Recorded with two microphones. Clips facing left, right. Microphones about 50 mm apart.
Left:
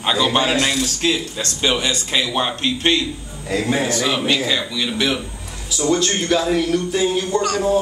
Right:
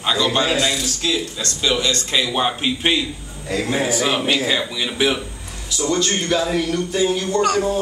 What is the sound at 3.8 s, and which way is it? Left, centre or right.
Speech, centre.